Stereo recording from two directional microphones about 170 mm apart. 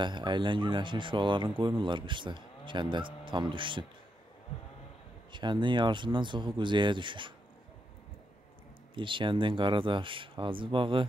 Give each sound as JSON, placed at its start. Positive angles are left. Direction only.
{"t": 0.0, "sound": "speech", "side_deg": -25}
{"t": 5.3, "sound": "speech", "side_deg": -25}
{"t": 8.9, "sound": "speech", "side_deg": -30}